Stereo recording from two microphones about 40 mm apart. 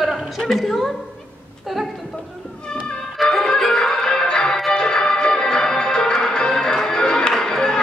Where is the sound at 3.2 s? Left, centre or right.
Centre.